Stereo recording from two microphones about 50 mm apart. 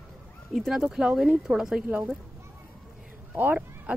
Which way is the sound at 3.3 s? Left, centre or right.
Right.